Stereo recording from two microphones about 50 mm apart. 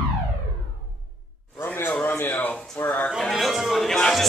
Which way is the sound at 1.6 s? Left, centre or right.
Left.